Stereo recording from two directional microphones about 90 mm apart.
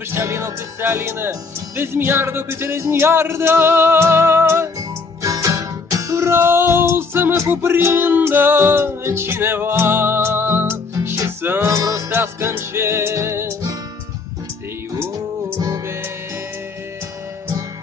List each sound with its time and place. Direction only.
0.1 s speech: 30° right (ahead or behind)
5.2 s music: 40° right (ahead or behind)